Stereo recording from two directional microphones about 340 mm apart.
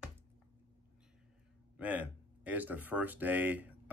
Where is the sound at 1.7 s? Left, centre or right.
Centre.